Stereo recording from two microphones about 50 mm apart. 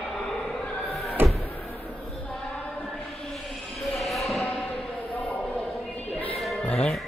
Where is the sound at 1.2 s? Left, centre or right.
Right.